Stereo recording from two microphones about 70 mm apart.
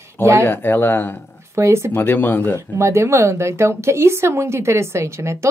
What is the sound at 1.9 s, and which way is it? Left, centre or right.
Speech, left.